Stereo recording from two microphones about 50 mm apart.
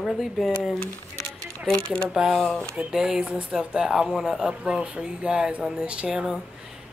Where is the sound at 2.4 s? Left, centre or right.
Centre.